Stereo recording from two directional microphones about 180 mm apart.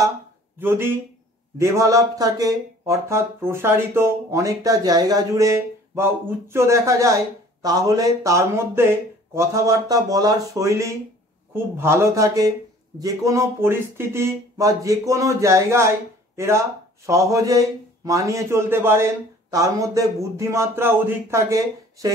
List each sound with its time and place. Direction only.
0.6 s speech: 10° right (ahead or behind)